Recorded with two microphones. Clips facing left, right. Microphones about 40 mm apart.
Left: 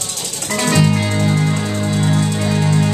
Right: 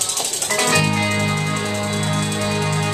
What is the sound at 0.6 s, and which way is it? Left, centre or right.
Music, centre.